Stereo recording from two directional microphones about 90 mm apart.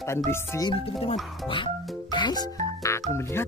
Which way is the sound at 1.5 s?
60° left (ahead or behind).